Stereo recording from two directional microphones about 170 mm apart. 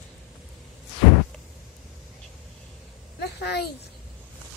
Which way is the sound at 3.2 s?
70° left (ahead or behind).